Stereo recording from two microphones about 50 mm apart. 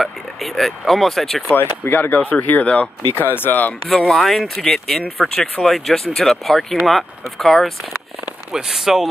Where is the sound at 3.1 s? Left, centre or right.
Left.